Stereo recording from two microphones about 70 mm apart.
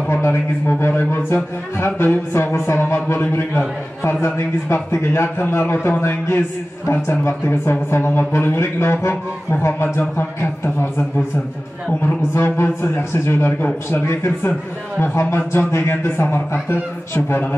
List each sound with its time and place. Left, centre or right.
0.1 s a man's voice: left
12.4 s a man's voice: left